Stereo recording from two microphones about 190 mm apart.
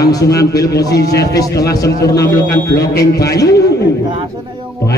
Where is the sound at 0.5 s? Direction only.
55° left (ahead or behind).